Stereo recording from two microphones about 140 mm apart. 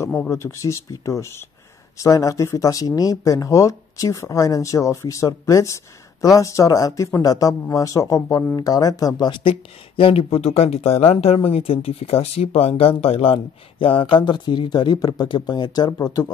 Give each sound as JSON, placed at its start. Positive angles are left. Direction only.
{"t": 0.3, "sound": "speech", "side_deg": 20}